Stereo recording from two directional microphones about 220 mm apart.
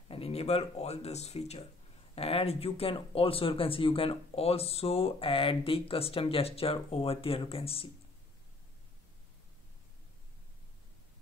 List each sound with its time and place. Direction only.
0.1 s speech: 25° left (ahead or behind)